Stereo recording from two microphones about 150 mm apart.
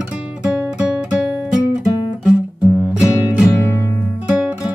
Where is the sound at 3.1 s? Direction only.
20° left (ahead or behind).